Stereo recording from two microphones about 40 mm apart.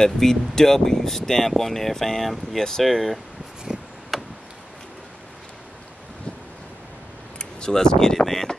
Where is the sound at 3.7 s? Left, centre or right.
Centre.